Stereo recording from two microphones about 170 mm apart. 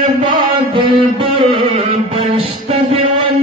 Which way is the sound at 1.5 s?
35° right (ahead or behind).